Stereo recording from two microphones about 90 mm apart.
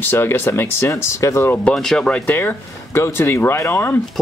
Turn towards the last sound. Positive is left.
turn(degrees=30)  # may be behind; listen again after turning